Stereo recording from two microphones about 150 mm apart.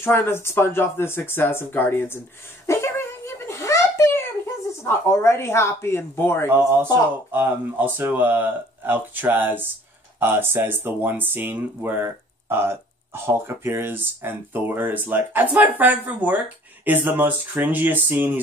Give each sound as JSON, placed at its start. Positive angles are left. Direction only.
{"t": 0.0, "sound": "speech", "side_deg": 15}
{"t": 6.5, "sound": "speech", "side_deg": -15}